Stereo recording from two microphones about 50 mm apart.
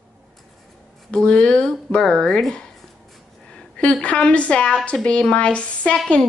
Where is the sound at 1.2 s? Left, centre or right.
Left.